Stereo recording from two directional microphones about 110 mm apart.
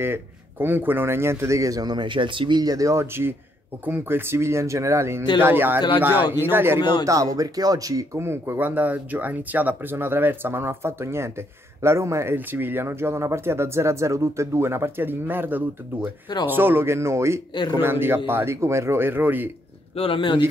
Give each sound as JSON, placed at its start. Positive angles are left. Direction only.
{"t": 0.0, "sound": "speech", "side_deg": -20}
{"t": 6.8, "sound": "speech", "side_deg": 40}
{"t": 7.1, "sound": "speech", "side_deg": -30}
{"t": 20.0, "sound": "speech", "side_deg": 50}